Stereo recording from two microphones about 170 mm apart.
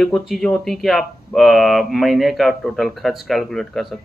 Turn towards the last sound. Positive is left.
turn(degrees=0)  # may be behind; listen again after turning